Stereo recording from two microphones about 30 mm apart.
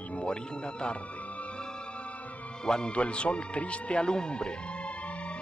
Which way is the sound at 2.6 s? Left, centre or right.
Left.